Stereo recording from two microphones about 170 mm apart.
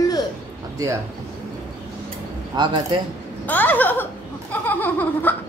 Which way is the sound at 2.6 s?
25° right (ahead or behind).